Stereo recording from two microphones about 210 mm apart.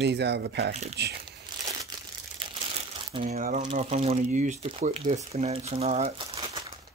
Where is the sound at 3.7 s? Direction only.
30° right (ahead or behind).